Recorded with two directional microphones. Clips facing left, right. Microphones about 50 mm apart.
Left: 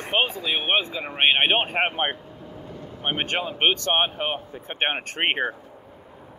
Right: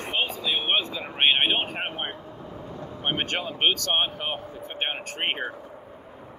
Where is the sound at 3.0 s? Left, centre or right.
Centre; by 5.6 s left.